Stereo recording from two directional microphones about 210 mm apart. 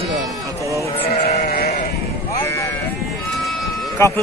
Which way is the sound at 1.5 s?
40° left (ahead or behind).